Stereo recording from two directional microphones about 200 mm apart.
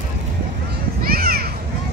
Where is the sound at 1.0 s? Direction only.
50° right (ahead or behind).